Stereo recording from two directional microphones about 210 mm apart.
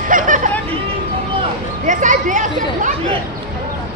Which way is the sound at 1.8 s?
35° right (ahead or behind).